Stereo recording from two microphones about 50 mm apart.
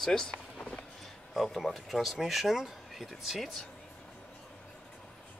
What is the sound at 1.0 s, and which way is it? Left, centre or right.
Speech, centre.